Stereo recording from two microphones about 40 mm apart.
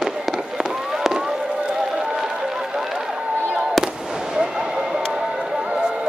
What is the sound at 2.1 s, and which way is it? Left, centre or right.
Run, centre.